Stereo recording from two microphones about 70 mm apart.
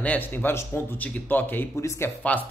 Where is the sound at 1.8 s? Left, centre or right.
Left.